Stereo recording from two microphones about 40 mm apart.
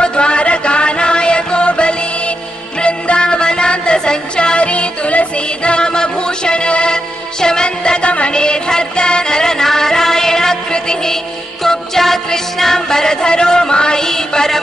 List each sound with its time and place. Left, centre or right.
0.0 s music: left
4.6 s music: left; by 14.6 s centre